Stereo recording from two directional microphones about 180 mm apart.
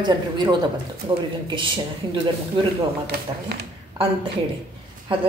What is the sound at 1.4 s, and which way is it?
Speech, 25° right (ahead or behind).